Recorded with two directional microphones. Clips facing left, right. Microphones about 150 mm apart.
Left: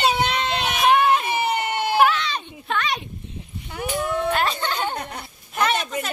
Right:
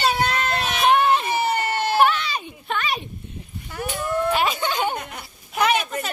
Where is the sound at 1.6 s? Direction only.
15° left (ahead or behind).